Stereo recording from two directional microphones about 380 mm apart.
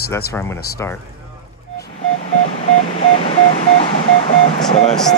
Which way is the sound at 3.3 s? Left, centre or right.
Centre.